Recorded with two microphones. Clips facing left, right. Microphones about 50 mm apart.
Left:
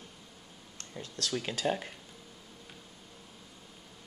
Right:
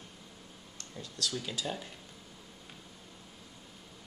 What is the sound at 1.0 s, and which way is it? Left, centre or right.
Speech, left.